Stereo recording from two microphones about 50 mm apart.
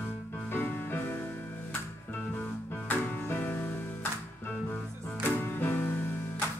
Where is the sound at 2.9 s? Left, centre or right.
Left.